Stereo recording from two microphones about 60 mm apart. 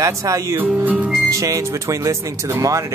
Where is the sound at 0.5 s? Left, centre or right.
Right.